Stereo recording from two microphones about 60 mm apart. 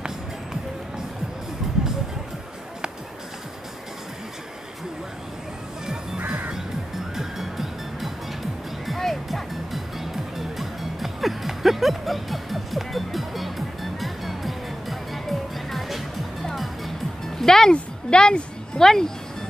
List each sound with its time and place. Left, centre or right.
0.0 s music: centre
6.1 s music: right
7.2 s music: centre
17.4 s a sound: centre